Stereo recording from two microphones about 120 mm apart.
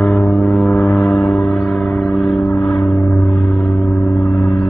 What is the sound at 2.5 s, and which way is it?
Gong, 10° left (ahead or behind).